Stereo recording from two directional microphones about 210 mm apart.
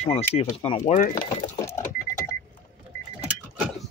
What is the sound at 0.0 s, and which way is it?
Speech, 30° left (ahead or behind).